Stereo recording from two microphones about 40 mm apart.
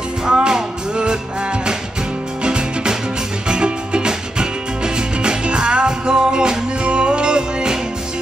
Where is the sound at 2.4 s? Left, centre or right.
Centre.